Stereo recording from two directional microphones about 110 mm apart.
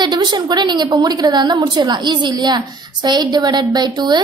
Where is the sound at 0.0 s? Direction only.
40° right (ahead or behind).